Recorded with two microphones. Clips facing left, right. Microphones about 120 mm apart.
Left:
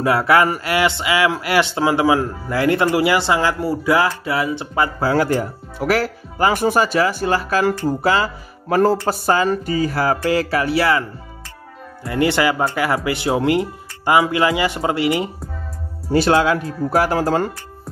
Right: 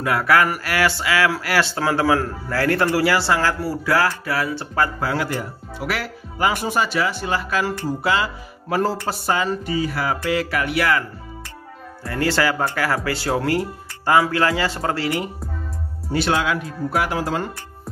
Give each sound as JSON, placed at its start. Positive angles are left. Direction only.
{"t": 0.0, "sound": "speech", "side_deg": 25}
{"t": 5.0, "sound": "speech", "side_deg": 35}
{"t": 12.0, "sound": "speech", "side_deg": 20}
{"t": 16.1, "sound": "speech", "side_deg": 40}